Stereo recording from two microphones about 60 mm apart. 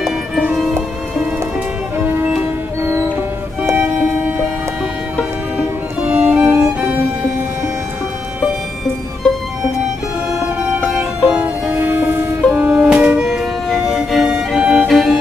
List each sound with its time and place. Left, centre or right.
2.0 s music: right
3.7 s violin: right
5.6 s music: centre
6.3 s music: right
9.2 s music: centre
10.6 s music: right
11.1 s music: centre
11.7 s music: right; by 14.8 s centre
14.9 s music: centre